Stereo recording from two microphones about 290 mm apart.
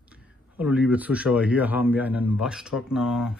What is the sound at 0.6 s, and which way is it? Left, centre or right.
A man's voice, centre.